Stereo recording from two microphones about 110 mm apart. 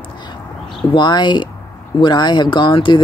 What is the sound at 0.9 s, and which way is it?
Speech, 45° left (ahead or behind).